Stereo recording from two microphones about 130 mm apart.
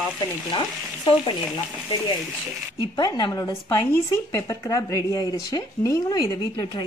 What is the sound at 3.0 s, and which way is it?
A woman's voice, 30° left (ahead or behind).